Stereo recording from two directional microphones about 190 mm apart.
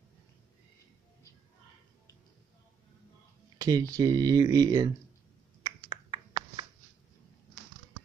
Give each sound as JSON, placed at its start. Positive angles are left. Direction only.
{"t": 3.5, "sound": "a sound", "side_deg": -20}
{"t": 3.9, "sound": "speech", "side_deg": -20}
{"t": 5.9, "sound": "finger snapping", "side_deg": -20}